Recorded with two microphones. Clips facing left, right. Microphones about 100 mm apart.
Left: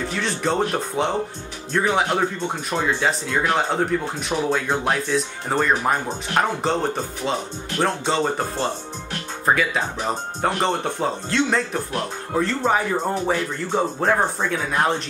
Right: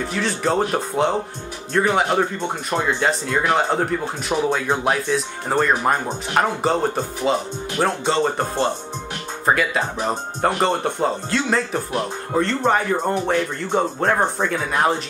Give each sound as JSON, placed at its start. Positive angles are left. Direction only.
{"t": 0.1, "sound": "speech", "side_deg": 0}